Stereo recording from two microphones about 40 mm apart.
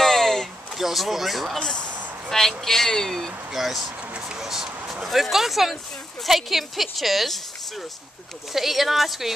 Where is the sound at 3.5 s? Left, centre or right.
Centre.